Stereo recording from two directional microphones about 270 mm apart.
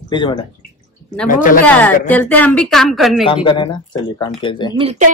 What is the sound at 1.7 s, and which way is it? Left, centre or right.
Speech, centre.